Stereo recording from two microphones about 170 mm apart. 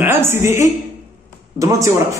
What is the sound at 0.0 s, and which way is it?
A woman's voice, 15° right (ahead or behind).